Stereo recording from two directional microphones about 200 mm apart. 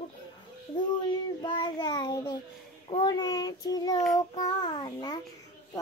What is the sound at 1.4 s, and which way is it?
A child's voice, 20° left (ahead or behind).